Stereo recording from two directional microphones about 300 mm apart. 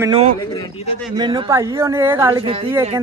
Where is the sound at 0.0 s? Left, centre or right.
Centre.